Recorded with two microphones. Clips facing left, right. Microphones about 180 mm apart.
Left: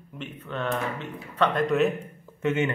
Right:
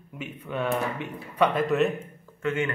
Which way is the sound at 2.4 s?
20° left (ahead or behind).